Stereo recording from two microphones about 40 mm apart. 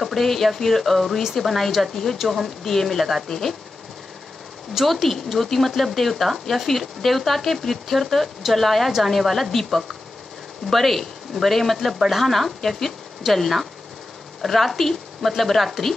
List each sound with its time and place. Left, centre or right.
0.0 s speech: centre
4.8 s speech: centre